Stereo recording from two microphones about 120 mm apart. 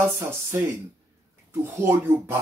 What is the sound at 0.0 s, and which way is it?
Speech, 20° right (ahead or behind).